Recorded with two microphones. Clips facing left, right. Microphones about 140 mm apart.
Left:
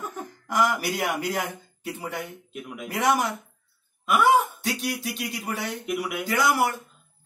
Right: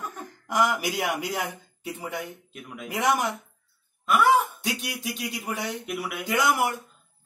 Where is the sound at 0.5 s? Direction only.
15° right (ahead or behind).